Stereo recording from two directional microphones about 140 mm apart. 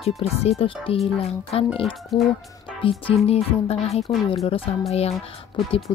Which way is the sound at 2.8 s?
40° left (ahead or behind).